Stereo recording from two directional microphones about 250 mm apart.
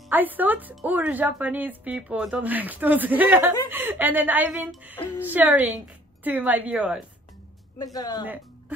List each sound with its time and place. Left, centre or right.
0.1 s a woman's voice: centre
7.8 s speech: centre
8.3 s music: centre